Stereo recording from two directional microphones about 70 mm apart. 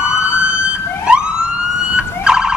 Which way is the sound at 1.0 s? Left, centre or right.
Centre.